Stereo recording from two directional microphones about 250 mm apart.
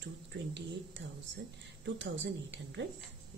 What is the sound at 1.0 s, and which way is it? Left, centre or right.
Speech, right.